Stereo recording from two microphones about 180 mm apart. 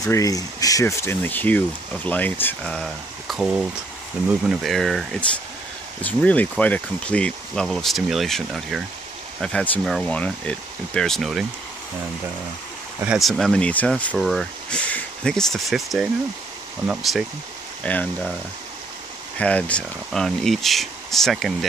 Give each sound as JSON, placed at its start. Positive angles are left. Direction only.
{"t": 0.0, "sound": "speech", "side_deg": 20}
{"t": 13.0, "sound": "speech", "side_deg": -5}
{"t": 19.3, "sound": "speech", "side_deg": 5}